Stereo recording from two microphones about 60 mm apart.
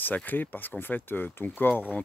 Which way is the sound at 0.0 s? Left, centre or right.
Left.